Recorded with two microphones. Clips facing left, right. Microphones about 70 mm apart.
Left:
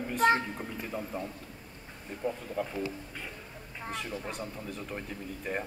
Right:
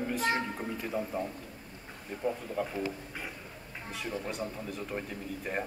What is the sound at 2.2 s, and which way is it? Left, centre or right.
Speech, centre.